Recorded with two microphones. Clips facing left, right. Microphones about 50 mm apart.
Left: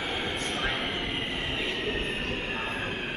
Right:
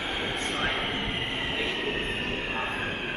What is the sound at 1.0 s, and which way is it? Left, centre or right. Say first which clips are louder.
Train: right 1 dB; centre.